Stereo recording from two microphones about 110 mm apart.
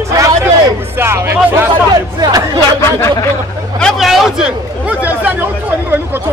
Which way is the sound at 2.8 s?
25° left (ahead or behind).